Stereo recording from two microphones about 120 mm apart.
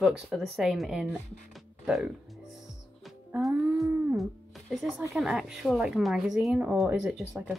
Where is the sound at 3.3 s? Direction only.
Centre (ahead or behind).